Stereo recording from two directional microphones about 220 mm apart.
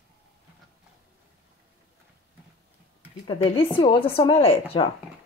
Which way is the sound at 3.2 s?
25° left (ahead or behind).